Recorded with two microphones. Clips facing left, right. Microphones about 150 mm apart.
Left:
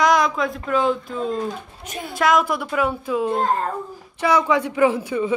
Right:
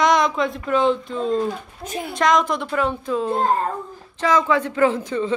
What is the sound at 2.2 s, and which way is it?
A man's voice, 5° left (ahead or behind).